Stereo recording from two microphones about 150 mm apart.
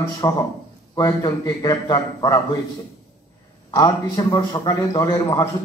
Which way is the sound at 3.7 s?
25° left (ahead or behind).